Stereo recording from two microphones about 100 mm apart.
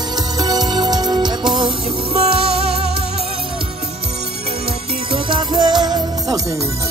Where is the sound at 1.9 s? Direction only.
80° right.